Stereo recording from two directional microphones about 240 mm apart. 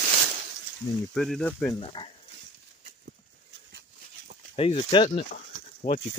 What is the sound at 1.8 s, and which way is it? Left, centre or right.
Speech, left.